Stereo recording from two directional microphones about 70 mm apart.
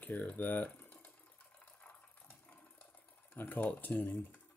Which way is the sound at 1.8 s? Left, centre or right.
Centre.